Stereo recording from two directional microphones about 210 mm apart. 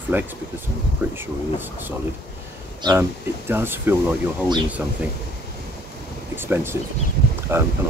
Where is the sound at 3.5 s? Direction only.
10° right (ahead or behind).